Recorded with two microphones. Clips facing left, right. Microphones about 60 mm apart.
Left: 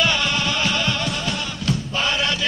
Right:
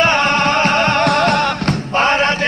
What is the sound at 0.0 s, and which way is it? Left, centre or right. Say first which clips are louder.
Music: right 8 dB; right.